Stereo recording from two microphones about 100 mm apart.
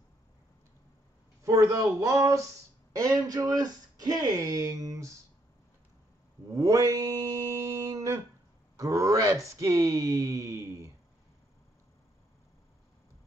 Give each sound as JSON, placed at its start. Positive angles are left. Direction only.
{"t": 1.4, "sound": "speech", "side_deg": -30}
{"t": 6.5, "sound": "mantra", "side_deg": -35}
{"t": 8.7, "sound": "speech", "side_deg": -35}